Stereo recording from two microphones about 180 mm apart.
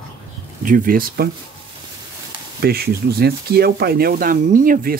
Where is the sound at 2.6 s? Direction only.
60° right (ahead or behind).